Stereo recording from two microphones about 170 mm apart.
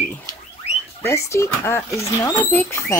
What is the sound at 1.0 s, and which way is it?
Speech, 15° left (ahead or behind).